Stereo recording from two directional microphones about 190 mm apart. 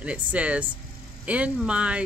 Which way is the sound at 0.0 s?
5° right (ahead or behind).